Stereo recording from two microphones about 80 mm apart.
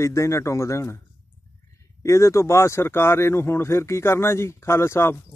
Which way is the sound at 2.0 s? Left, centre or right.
Left.